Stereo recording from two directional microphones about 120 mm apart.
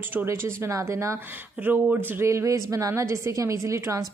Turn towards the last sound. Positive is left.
turn(degrees=-25)  # may be behind; listen again after turning